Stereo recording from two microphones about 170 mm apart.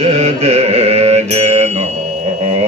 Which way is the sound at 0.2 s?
40° right (ahead or behind).